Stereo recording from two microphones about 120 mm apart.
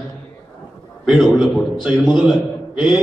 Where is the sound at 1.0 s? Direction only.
Centre (ahead or behind).